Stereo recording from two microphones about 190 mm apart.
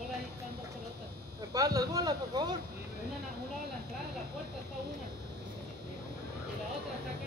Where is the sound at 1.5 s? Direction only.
20° right (ahead or behind).